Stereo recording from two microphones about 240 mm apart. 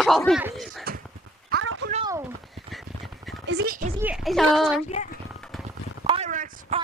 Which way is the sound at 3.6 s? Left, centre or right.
Right.